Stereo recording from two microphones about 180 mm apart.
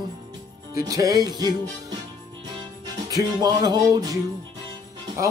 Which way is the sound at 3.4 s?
25° right (ahead or behind).